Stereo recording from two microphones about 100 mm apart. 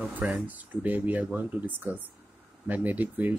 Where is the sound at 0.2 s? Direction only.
15° right (ahead or behind).